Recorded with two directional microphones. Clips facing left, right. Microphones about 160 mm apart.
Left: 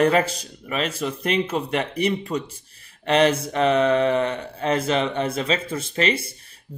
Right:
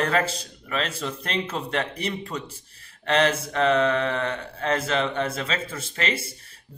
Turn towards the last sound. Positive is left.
turn(degrees=15)  # may be behind; listen again after turning